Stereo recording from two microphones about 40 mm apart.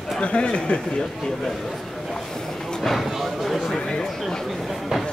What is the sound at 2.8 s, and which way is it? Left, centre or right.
Speech, centre.